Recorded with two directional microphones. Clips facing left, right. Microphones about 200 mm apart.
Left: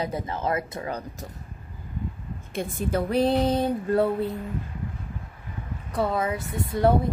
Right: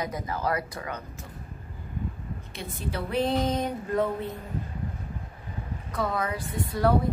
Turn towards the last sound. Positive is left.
turn(degrees=25)  # may be behind; listen again after turning